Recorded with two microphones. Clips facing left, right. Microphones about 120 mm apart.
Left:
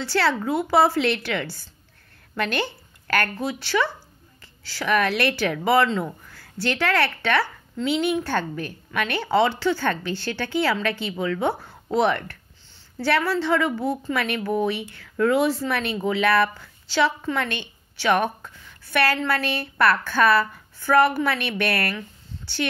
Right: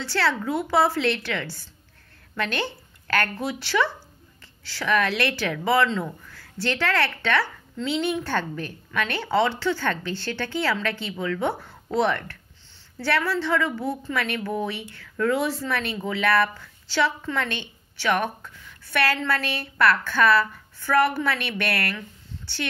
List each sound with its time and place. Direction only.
0.0 s a woman's voice: 10° left (ahead or behind)
3.3 s a woman's voice: centre (ahead or behind); by 22.0 s 15° left (ahead or behind)